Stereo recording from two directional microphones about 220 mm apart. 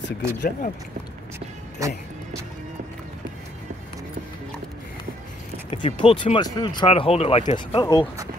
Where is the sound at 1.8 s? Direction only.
15° right (ahead or behind).